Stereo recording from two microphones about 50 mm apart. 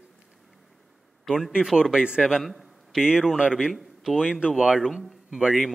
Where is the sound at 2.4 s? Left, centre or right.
Centre.